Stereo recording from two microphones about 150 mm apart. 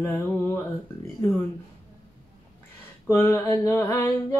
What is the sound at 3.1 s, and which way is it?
Mantra, 15° left (ahead or behind).